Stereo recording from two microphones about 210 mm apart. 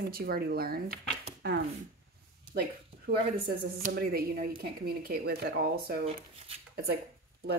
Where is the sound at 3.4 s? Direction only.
45° right (ahead or behind).